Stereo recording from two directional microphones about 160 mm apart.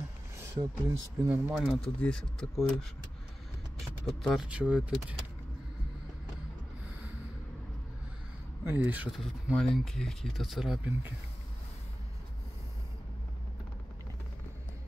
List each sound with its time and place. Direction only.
0.6 s speech: 20° right (ahead or behind)
1.3 s speech: centre (ahead or behind)
4.2 s speech: centre (ahead or behind)
8.6 s speech: 10° right (ahead or behind)